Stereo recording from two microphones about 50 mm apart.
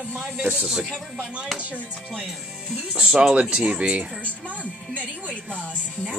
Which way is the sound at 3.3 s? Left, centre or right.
Right.